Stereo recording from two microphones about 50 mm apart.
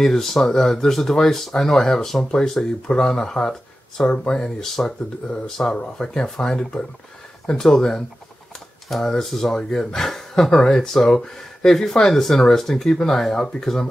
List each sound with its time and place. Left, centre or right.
0.0 s speech: centre